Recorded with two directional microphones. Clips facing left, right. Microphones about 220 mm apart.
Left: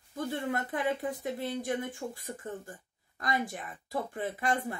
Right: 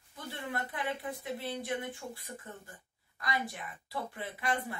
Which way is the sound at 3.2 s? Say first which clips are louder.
Left 4 dB; 45° left (ahead or behind).